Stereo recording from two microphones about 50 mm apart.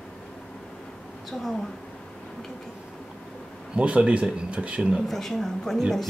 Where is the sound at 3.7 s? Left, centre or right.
Right.